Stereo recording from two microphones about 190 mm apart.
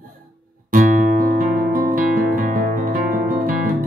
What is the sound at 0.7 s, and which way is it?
Music, 45° right (ahead or behind).